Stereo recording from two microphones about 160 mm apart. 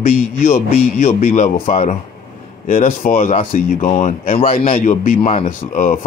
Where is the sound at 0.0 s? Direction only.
60° left (ahead or behind).